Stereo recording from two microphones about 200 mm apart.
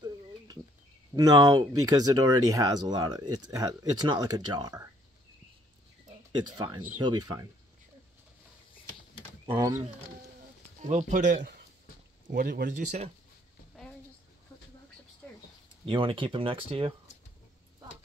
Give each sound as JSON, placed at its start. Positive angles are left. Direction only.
{"t": 1.1, "sound": "speech", "side_deg": -20}
{"t": 6.3, "sound": "speech", "side_deg": -20}
{"t": 9.5, "sound": "speech", "side_deg": -15}
{"t": 10.8, "sound": "speech", "side_deg": -35}
{"t": 12.3, "sound": "speech", "side_deg": -50}
{"t": 15.8, "sound": "speech", "side_deg": -25}